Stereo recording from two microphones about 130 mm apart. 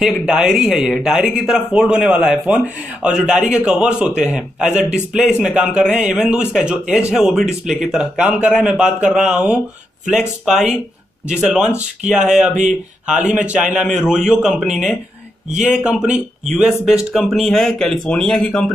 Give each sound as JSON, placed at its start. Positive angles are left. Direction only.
{"t": 0.0, "sound": "speech", "side_deg": -5}
{"t": 4.6, "sound": "speech", "side_deg": -65}
{"t": 5.4, "sound": "speech", "side_deg": -5}